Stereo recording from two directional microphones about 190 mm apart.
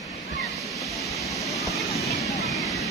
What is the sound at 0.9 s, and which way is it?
Vehicle, centre (ahead or behind).